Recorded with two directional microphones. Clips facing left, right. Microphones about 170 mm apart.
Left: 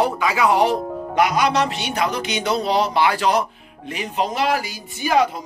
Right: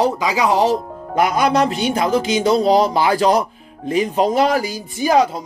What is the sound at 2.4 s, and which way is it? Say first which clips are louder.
Speech: right 5 dB; 40° right (ahead or behind).